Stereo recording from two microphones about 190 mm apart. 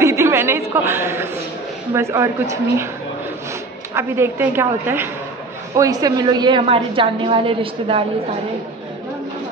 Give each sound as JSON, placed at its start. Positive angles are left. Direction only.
{"t": 0.0, "sound": "a man's voice", "side_deg": -15}
{"t": 3.9, "sound": "a woman's voice", "side_deg": -15}